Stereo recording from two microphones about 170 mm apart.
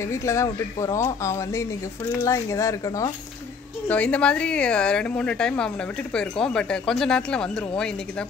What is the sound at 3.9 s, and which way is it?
Speech, 5° left (ahead or behind).